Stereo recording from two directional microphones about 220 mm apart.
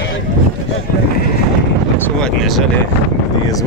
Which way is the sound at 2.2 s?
Centre (ahead or behind).